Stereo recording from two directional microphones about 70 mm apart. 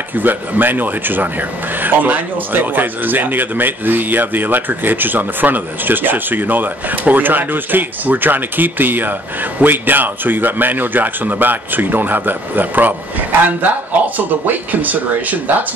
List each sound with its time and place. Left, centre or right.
0.1 s speech: right
14.1 s speech: right